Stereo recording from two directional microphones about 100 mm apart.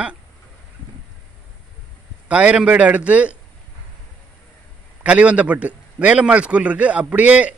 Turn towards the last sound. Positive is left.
turn(degrees=-15)  # may be behind; listen again after turning